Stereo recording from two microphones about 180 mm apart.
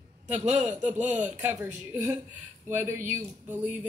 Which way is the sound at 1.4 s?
10° right (ahead or behind).